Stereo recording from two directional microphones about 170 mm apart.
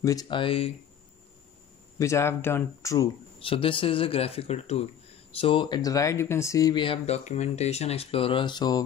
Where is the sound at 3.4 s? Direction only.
30° left (ahead or behind).